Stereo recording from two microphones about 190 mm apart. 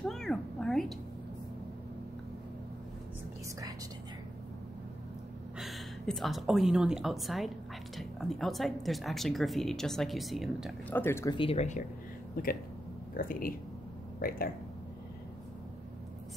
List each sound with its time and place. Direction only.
0.0 s cat: centre (ahead or behind)
5.6 s a woman's voice: centre (ahead or behind)
11.0 s speech: 15° left (ahead or behind)
11.3 s speech: 30° left (ahead or behind)
12.4 s speech: 45° left (ahead or behind)